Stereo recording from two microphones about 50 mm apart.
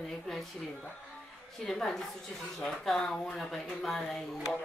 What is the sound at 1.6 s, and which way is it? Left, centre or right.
A woman's voice, centre.